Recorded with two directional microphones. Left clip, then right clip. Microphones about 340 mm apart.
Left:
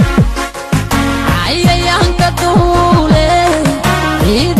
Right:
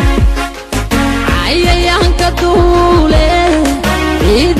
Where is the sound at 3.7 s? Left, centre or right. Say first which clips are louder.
Even; centre.